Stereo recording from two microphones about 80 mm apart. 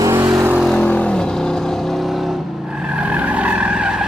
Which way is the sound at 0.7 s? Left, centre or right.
Centre.